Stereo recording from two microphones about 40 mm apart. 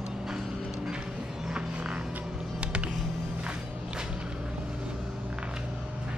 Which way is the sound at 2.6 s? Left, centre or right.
Right.